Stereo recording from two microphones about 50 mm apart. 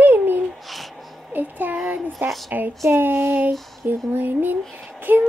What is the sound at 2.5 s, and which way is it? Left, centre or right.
Speech, right.